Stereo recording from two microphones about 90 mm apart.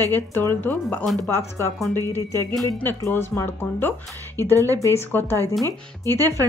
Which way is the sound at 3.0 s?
25° left (ahead or behind).